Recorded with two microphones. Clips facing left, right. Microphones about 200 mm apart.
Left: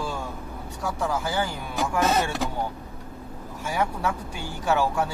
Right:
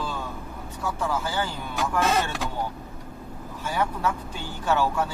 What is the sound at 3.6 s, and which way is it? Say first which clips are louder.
Speech: even; 10° left (ahead or behind).